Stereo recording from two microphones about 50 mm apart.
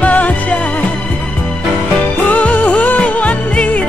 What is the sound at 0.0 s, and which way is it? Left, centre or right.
Music, left.